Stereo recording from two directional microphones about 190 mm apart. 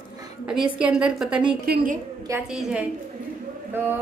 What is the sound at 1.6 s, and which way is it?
Speech, 50° right (ahead or behind).